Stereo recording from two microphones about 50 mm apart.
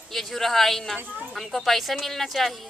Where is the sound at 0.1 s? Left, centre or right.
Centre.